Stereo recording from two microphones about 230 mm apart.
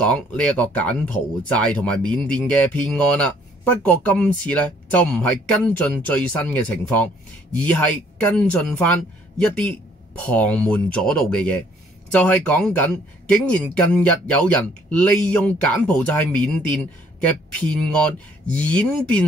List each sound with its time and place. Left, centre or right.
0.0 s speech: centre
17.6 s speech: centre